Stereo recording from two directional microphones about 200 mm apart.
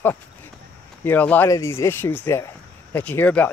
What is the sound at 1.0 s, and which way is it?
Speech, 10° left (ahead or behind).